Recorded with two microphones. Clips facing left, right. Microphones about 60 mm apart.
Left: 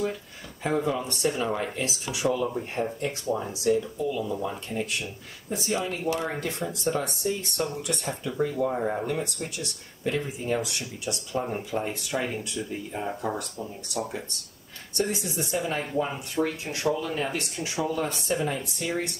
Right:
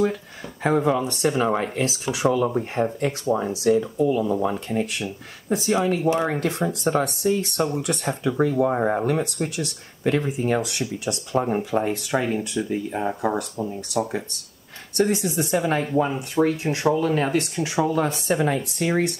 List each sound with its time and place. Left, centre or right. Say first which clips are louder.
0.7 s speech: right 6 dB; right
4.0 s speech: right 8 dB; right
4.4 s speech: right 7 dB; right
15.0 s speech: right 7 dB; right